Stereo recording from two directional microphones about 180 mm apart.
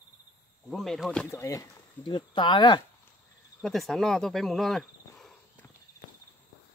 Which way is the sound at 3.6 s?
Centre (ahead or behind).